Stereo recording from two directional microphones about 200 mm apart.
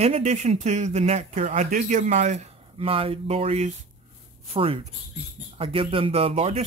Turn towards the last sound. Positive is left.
turn(degrees=-30)  # may be behind; listen again after turning